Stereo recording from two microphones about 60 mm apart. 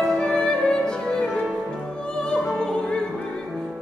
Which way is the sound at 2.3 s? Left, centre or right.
Centre.